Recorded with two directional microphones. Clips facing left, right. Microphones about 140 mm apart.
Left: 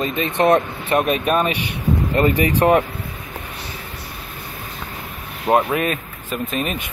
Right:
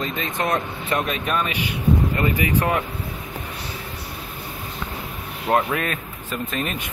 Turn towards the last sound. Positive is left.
turn(degrees=20)  # may be behind; listen again after turning